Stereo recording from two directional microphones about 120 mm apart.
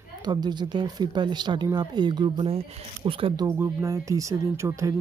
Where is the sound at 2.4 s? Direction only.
50° right (ahead or behind).